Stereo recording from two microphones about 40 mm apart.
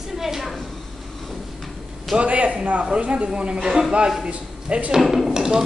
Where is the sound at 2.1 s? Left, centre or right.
Right.